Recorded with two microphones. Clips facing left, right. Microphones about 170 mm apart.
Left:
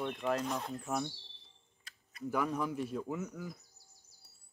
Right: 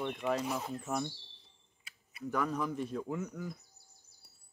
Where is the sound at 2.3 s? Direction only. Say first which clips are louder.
Even; 10° left (ahead or behind).